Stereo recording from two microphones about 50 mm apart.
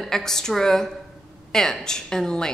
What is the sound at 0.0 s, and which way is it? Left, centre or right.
A woman's voice, centre.